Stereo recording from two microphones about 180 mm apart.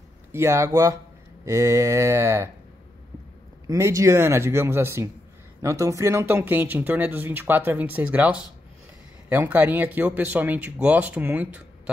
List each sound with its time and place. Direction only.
0.3 s speech: 15° right (ahead or behind)
3.6 s speech: 15° right (ahead or behind)